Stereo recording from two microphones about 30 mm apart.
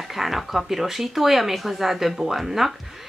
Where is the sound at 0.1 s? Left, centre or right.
Centre.